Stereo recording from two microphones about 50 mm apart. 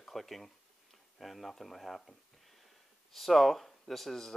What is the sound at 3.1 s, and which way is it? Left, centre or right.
Speech, centre.